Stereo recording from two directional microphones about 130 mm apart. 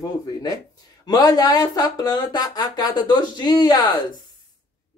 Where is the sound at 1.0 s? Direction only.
30° left (ahead or behind).